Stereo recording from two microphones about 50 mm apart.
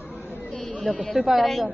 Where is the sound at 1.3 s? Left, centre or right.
Centre.